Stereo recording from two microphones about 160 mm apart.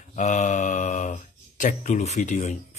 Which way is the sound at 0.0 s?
50° left (ahead or behind).